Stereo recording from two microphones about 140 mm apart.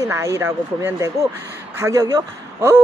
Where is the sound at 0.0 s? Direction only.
20° right (ahead or behind).